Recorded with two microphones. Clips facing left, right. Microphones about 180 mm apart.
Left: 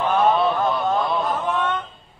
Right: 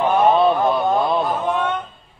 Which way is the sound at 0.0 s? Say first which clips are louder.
Right 3 dB; 15° right (ahead or behind).